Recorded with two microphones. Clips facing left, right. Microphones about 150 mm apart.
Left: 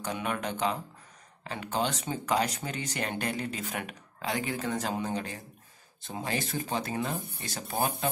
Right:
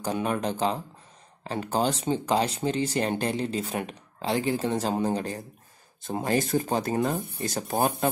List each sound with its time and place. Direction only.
0.0 s speech: 35° right (ahead or behind)